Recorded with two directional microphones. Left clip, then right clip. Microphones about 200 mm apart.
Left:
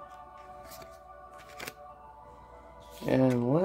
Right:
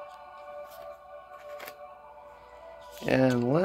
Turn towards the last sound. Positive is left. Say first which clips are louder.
# right 2 dB
turn(degrees=0)  # may be behind; listen again after turning